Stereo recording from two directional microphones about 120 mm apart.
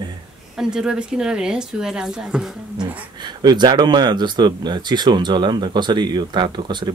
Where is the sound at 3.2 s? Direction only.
35° right (ahead or behind).